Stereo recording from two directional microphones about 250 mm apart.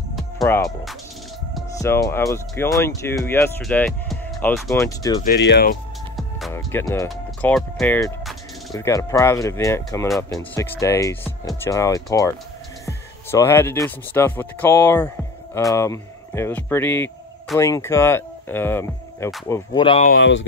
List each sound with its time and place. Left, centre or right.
0.1 s music: centre
1.8 s speech: centre
5.2 s speech: left
6.1 s music: centre
7.1 s speech: centre
20.1 s speech: left